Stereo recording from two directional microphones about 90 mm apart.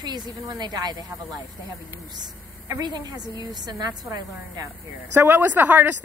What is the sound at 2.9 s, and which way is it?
A woman's voice, 45° right (ahead or behind).